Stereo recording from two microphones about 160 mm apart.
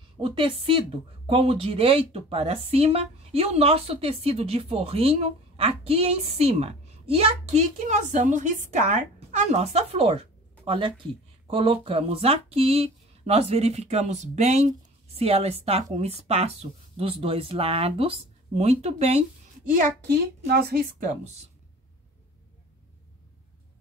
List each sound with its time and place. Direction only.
0.2 s a woman's voice: 35° right (ahead or behind)
20.4 s speech: 80° right